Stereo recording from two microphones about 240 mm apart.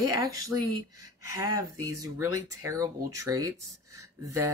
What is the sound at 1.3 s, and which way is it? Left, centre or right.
Speech, centre.